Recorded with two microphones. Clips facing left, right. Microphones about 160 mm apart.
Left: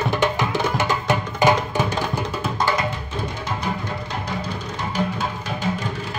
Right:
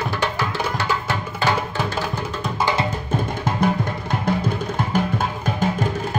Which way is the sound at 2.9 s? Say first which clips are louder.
Right 4 dB; 50° right (ahead or behind).